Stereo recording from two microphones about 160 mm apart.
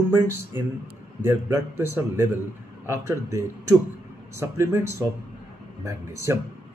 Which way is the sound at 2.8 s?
20° right (ahead or behind).